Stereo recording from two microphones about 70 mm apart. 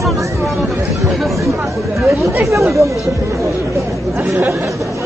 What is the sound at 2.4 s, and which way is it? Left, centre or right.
Chatter, right.